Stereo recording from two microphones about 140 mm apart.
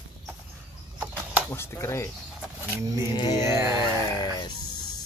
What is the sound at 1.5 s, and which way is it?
Speech, 20° left (ahead or behind).